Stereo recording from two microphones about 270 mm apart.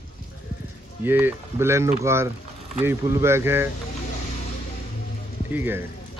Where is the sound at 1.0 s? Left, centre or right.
Centre.